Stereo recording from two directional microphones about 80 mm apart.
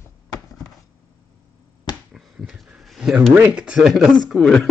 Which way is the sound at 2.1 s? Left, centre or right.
Centre.